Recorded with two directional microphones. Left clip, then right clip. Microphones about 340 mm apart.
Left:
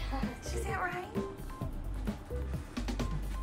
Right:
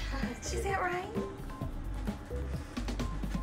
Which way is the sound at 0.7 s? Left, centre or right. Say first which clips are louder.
Right 3 dB; centre.